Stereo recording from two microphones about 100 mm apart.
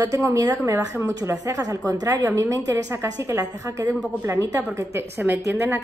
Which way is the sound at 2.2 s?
30° right (ahead or behind).